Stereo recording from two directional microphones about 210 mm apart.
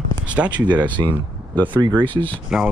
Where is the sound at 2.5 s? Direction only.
Centre (ahead or behind).